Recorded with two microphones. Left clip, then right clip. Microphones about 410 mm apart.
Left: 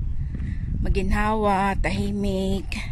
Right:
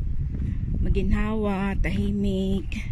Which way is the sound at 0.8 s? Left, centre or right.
Centre.